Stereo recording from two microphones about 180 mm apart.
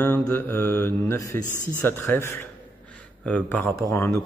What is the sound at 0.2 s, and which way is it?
Speech, 10° left (ahead or behind).